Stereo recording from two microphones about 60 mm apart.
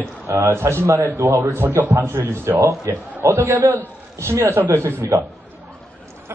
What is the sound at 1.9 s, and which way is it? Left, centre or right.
Speech, right.